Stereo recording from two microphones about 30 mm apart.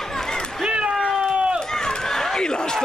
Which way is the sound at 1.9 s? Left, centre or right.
Centre.